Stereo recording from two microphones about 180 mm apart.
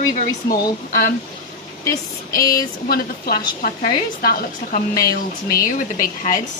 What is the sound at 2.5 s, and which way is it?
A woman's voice, 60° left (ahead or behind).